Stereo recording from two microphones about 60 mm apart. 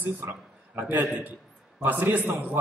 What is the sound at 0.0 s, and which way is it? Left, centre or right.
A man's voice, right.